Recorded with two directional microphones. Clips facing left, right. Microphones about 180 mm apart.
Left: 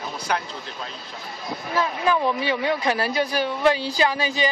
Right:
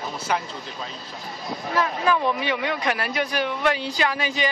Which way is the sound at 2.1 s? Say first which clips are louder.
Left 2 dB; 30° left (ahead or behind).